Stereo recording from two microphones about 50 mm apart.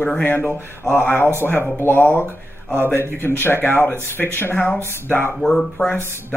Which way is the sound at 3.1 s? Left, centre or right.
Left.